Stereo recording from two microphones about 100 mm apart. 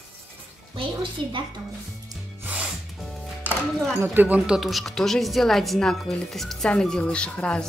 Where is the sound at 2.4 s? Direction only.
15° right (ahead or behind).